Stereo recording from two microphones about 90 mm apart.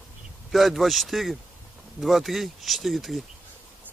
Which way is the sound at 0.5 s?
Centre (ahead or behind).